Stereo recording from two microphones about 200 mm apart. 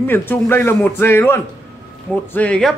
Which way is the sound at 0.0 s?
10° left (ahead or behind).